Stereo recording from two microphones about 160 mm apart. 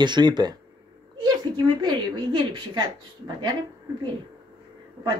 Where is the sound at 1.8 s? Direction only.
30° right (ahead or behind).